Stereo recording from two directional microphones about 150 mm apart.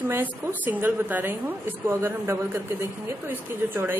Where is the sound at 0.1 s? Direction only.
15° right (ahead or behind).